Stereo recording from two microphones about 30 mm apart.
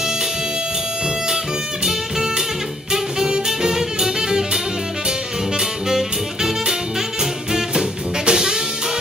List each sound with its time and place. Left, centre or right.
1.9 s music: centre
3.4 s music: centre
5.6 s music: centre
8.3 s music: right